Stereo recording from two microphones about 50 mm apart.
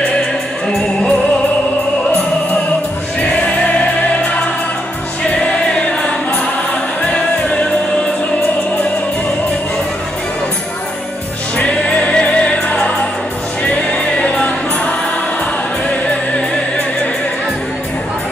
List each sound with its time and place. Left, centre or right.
0.7 s music: centre
7.1 s music: left
11.5 s music: left
16.3 s music: centre